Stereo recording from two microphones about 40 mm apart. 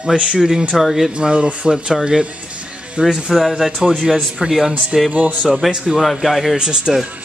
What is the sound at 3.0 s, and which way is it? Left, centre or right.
Speech, centre.